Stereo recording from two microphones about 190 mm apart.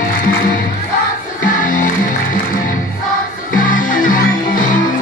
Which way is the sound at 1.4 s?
45° left (ahead or behind).